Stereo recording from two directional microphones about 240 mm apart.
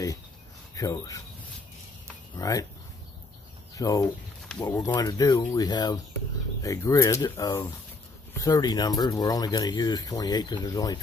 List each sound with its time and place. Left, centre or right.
0.7 s speech: centre
2.3 s speech: centre
3.7 s speech: centre